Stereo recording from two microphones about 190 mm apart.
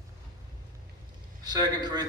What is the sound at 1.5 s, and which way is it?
Speech, 20° right (ahead or behind).